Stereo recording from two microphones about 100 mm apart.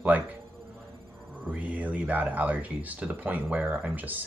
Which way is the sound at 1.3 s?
15° right (ahead or behind).